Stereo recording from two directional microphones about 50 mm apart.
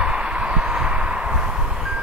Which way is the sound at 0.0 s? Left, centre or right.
Centre.